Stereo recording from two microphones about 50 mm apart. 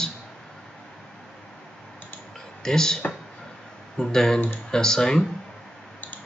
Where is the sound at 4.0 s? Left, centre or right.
Centre.